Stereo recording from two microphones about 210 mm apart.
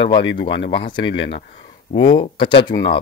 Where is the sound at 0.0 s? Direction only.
55° left (ahead or behind).